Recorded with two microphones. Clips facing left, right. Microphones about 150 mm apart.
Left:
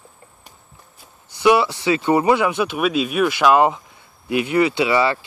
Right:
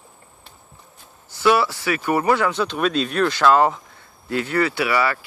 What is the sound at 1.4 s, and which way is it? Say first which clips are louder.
Speech: left 2 dB; 20° left (ahead or behind).